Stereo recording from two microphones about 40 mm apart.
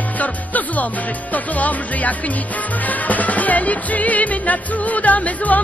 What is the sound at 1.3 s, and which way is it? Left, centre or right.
Music, left.